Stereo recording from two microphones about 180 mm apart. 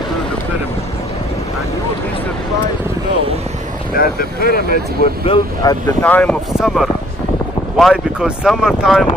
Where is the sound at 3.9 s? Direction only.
55° left (ahead or behind).